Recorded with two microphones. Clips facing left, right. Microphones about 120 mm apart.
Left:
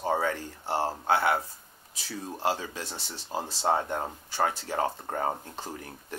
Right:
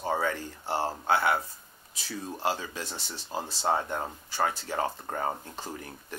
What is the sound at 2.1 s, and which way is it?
Speech, 30° left (ahead or behind).